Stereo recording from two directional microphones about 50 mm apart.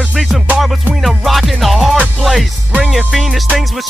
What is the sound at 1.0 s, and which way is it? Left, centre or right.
Music, centre.